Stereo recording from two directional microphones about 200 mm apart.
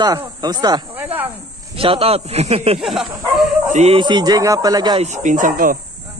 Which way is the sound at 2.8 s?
Centre (ahead or behind).